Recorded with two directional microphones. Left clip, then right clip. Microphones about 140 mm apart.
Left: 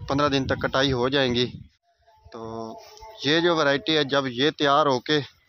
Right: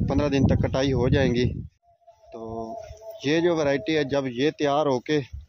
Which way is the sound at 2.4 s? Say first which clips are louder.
Right 1 dB; 5° left (ahead or behind).